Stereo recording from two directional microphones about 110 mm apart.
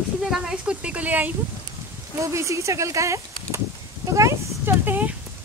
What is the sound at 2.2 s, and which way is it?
Speech, 25° right (ahead or behind).